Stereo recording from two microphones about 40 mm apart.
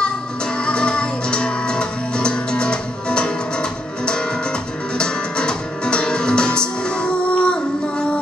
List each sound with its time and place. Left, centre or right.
0.6 s music: left